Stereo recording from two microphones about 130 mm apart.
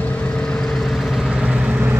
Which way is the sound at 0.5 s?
5° left (ahead or behind).